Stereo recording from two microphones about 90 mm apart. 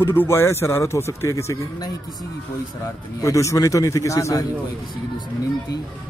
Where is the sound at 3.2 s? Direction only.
35° left (ahead or behind).